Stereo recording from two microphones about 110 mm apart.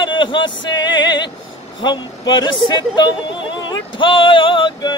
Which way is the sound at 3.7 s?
50° left (ahead or behind).